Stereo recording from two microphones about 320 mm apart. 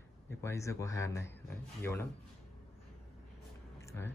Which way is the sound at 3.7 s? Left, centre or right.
Centre.